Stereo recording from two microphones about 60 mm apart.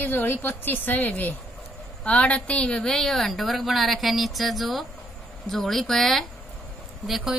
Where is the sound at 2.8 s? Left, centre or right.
Centre.